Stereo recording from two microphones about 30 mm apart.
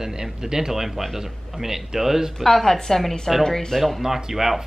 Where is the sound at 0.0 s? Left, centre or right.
Centre.